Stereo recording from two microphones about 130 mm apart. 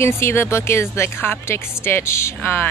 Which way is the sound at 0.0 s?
20° left (ahead or behind).